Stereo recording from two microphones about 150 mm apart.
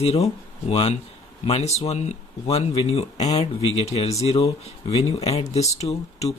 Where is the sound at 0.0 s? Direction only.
45° left (ahead or behind).